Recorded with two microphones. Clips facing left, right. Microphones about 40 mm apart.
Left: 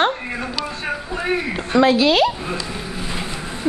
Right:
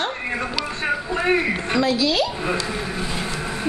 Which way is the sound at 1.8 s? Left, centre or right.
Left.